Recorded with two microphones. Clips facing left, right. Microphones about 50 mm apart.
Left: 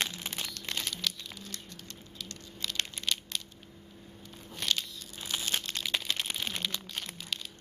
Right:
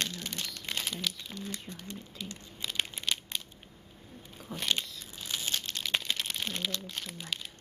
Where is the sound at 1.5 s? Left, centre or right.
Centre.